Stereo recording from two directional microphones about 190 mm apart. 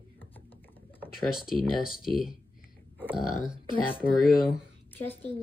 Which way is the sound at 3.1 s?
Centre (ahead or behind).